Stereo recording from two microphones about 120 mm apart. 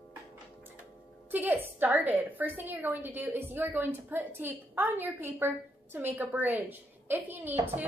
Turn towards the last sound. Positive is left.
turn(degrees=-15)  # may be behind; listen again after turning